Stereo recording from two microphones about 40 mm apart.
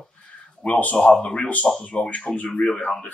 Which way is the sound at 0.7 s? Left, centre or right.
Left.